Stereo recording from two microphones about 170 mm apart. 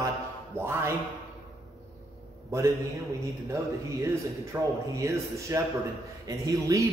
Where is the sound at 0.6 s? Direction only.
15° right (ahead or behind).